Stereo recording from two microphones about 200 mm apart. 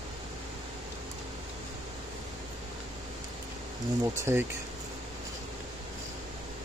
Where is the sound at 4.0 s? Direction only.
10° right (ahead or behind).